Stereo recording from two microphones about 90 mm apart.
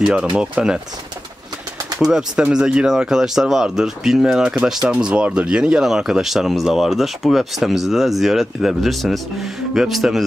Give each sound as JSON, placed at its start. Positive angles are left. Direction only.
{"t": 0.0, "sound": "speech", "side_deg": -10}
{"t": 2.0, "sound": "speech", "side_deg": -5}